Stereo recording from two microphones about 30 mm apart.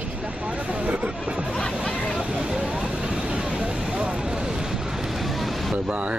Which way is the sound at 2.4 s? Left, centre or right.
Right.